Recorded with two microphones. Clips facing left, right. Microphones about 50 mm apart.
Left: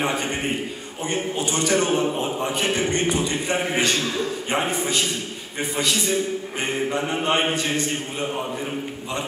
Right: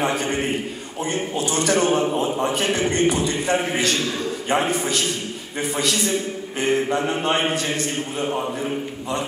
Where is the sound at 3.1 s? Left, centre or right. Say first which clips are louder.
Right 1 dB; left.